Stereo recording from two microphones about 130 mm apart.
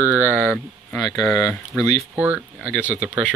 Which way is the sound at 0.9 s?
Centre (ahead or behind).